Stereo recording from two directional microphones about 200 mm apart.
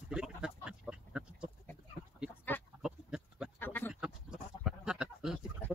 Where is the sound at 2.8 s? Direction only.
5° right (ahead or behind).